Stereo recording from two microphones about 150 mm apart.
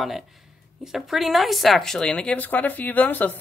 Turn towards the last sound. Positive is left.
turn(degrees=10)  # may be behind; listen again after turning